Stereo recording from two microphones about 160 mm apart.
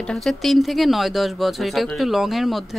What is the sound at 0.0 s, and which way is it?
Speech, centre (ahead or behind).